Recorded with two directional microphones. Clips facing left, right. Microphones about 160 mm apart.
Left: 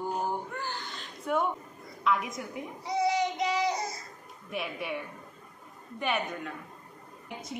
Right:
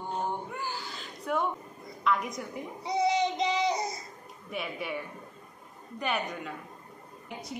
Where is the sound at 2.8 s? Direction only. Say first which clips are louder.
Right 1 dB; 20° right (ahead or behind).